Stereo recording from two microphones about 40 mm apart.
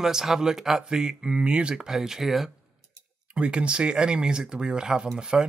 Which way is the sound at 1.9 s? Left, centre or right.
Centre.